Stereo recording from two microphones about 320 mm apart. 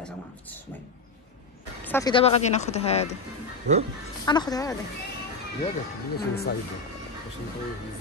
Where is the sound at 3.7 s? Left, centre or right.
Right.